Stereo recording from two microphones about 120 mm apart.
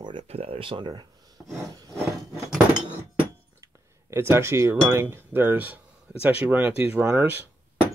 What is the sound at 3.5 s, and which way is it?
Speech, 20° right (ahead or behind).